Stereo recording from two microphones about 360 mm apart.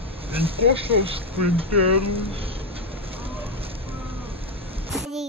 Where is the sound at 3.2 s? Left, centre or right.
Centre.